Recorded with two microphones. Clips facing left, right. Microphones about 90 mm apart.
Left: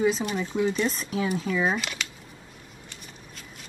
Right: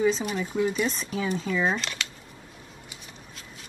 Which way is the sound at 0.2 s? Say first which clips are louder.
Even; centre (ahead or behind).